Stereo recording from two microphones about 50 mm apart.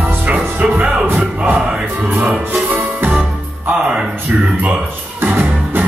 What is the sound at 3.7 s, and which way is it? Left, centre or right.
Music, centre.